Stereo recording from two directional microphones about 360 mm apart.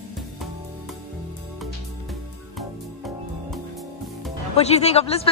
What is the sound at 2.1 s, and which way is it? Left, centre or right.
Music, centre.